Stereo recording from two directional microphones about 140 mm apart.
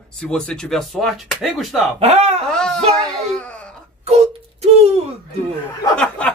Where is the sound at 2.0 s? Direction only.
45° right (ahead or behind).